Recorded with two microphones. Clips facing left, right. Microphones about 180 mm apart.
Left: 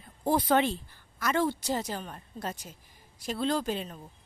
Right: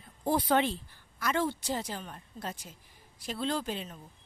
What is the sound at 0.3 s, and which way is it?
A woman's voice, 45° left (ahead or behind).